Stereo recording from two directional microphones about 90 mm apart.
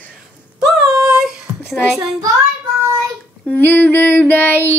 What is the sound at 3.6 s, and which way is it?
Music, 20° left (ahead or behind).